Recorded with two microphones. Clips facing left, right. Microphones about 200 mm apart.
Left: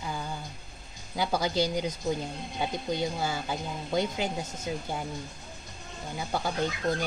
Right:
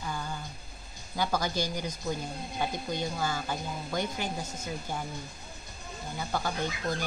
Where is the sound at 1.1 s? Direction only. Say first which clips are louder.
Left 2 dB; 15° left (ahead or behind).